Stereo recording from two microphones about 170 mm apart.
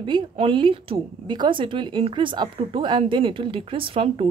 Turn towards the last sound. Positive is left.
turn(degrees=-35)  # may be behind; listen again after turning